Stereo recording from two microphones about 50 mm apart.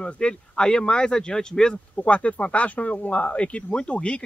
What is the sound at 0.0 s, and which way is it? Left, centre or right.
Speech, centre.